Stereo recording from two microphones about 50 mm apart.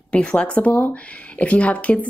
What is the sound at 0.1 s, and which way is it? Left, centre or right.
Speech, centre.